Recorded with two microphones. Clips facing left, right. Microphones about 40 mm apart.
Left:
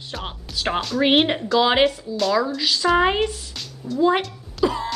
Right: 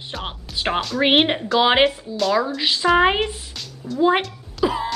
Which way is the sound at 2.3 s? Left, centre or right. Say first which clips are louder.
Even; centre.